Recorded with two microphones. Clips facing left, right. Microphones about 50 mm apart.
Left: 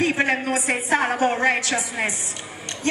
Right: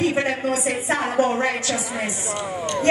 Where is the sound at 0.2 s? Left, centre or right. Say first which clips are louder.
Left 1 dB; left.